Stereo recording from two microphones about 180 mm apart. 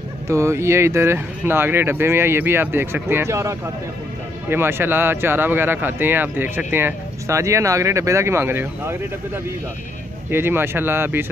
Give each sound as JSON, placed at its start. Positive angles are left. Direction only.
{"t": 0.3, "sound": "speech", "side_deg": -15}